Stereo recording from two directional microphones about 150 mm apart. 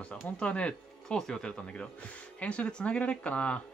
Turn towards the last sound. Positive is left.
turn(degrees=10)  # may be behind; listen again after turning